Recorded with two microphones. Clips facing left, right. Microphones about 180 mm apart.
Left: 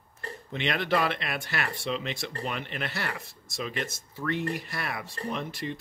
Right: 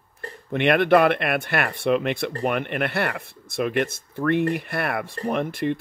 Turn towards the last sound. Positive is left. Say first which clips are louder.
# right 9 dB
turn(degrees=-55)  # may be behind; listen again after turning